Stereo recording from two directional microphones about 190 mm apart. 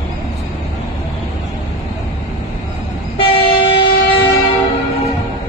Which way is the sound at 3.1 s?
30° left (ahead or behind).